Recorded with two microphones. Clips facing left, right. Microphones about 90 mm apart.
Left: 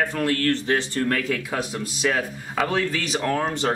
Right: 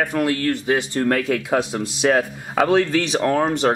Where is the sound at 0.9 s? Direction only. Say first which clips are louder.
Right 4 dB; 25° right (ahead or behind).